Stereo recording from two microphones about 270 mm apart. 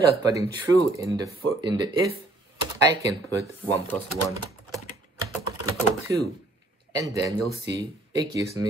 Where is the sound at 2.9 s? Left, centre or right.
Centre.